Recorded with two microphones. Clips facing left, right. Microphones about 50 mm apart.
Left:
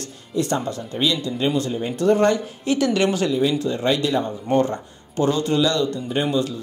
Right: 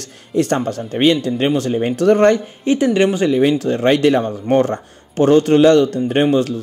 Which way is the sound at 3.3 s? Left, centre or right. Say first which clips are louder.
Right 6 dB; right.